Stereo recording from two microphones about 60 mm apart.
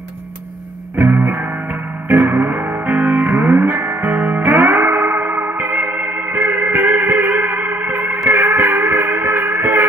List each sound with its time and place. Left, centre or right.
0.9 s music: right